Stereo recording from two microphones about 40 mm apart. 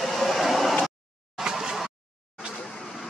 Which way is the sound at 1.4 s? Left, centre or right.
Centre.